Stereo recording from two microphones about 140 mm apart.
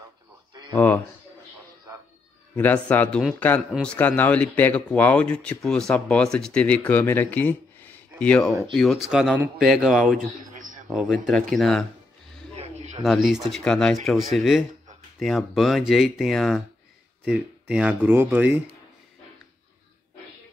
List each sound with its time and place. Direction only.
0.7 s speech: 10° left (ahead or behind)
2.5 s speech: 10° left (ahead or behind)
10.1 s a sound: 70° right (ahead or behind)
10.9 s speech: 5° right (ahead or behind)
12.5 s a sound: 50° right (ahead or behind)
13.0 s speech: centre (ahead or behind)